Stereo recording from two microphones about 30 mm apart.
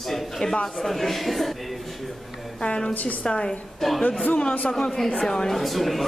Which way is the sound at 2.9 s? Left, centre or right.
Left.